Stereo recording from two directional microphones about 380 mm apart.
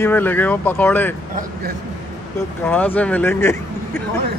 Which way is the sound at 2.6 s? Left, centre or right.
Centre.